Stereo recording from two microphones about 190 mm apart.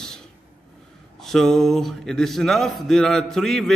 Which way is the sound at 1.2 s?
Centre (ahead or behind).